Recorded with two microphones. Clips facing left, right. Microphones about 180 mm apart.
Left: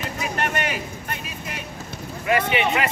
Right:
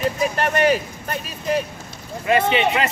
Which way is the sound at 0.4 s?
35° right (ahead or behind).